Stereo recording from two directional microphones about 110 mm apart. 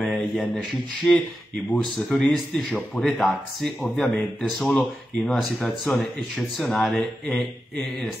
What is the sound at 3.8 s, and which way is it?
Speech, 15° left (ahead or behind).